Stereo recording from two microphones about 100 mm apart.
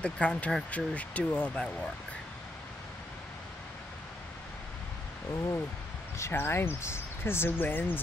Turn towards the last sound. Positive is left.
turn(degrees=20)  # may be behind; listen again after turning